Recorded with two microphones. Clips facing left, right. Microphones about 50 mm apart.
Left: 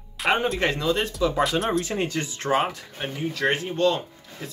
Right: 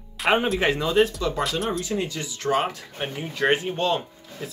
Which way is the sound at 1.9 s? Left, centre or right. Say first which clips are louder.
Left 1 dB; left.